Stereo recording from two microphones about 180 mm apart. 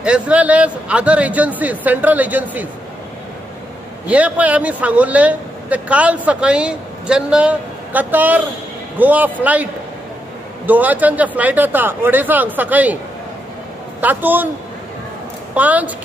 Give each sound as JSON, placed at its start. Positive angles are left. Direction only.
{"t": 0.0, "sound": "a man's voice", "side_deg": -5}
{"t": 4.1, "sound": "a man's voice", "side_deg": -10}
{"t": 10.7, "sound": "a man's voice", "side_deg": -10}
{"t": 14.0, "sound": "a man's voice", "side_deg": -10}
{"t": 15.5, "sound": "a man's voice", "side_deg": -10}